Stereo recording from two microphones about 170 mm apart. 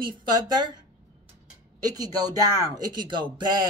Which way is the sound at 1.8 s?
20° right (ahead or behind).